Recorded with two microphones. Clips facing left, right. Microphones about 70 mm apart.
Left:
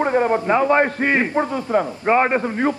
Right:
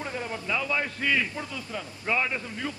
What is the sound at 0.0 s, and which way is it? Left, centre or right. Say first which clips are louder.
A man's voice: left 16 dB; left.